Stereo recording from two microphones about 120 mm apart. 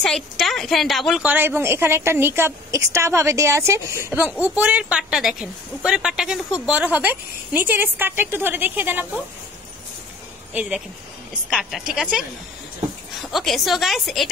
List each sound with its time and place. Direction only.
0.0 s a woman's voice: 5° left (ahead or behind)
1.2 s a woman's voice: 15° right (ahead or behind)
10.5 s a woman's voice: 10° right (ahead or behind)